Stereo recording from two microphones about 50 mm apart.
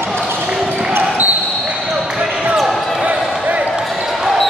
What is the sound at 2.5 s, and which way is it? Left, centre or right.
Basketball bounce, centre.